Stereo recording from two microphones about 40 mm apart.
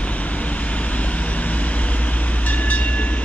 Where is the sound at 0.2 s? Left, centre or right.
Left.